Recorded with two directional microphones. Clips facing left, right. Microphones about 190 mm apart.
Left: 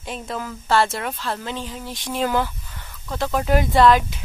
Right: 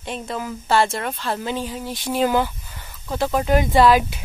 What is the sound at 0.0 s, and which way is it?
Speech, centre (ahead or behind).